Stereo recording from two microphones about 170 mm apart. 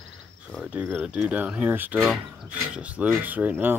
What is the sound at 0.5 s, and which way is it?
Speech, 5° right (ahead or behind).